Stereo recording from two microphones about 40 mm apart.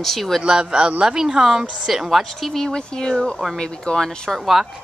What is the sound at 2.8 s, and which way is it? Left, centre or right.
Speech, left.